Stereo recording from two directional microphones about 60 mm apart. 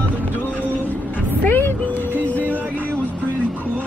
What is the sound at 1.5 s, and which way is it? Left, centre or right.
Vehicle, left.